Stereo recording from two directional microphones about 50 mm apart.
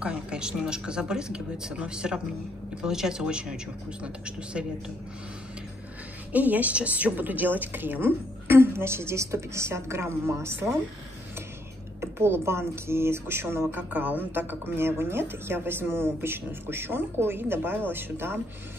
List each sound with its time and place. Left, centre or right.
0.0 s a woman's voice: centre
6.3 s a woman's voice: right
12.0 s speech: right
13.7 s a woman's voice: right